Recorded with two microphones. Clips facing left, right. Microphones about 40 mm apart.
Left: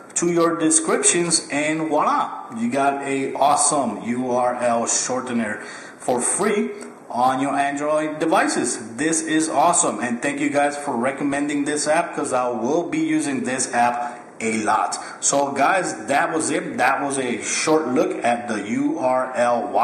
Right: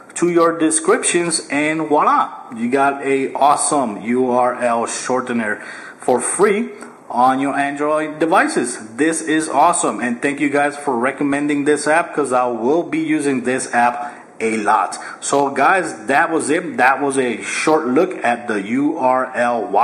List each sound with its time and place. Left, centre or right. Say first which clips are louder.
0.2 s a man's voice: right 4 dB; centre